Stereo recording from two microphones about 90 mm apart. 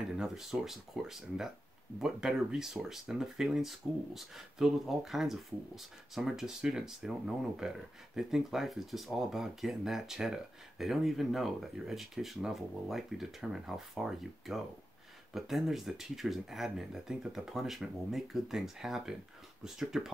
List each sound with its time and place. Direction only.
0.2 s speech: 5° right (ahead or behind)